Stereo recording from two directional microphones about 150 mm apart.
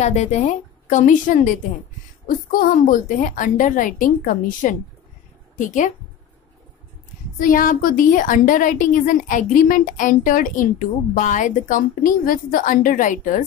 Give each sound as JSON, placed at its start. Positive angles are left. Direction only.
{"t": 0.0, "sound": "a woman's voice", "side_deg": 50}
{"t": 7.3, "sound": "a woman's voice", "side_deg": 65}